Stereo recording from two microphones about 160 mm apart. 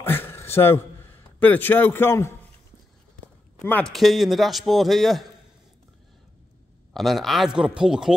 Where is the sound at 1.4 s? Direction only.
10° left (ahead or behind).